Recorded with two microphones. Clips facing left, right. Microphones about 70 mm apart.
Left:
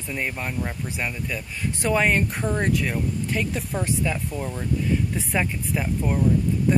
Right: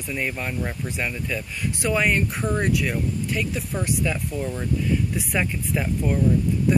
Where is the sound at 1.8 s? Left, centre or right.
Left.